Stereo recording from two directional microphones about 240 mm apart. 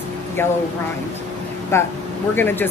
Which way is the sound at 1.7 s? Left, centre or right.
Centre.